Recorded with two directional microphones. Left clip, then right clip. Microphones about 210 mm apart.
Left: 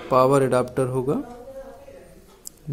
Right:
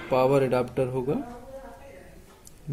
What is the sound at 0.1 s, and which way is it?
Speech, 20° left (ahead or behind).